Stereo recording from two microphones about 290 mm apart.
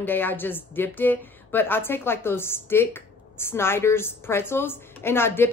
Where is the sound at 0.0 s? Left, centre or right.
Centre.